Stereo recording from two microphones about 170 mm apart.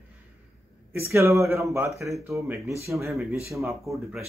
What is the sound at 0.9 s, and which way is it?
Speech, 15° right (ahead or behind).